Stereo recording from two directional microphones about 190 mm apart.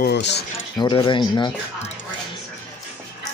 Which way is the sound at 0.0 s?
60° left (ahead or behind).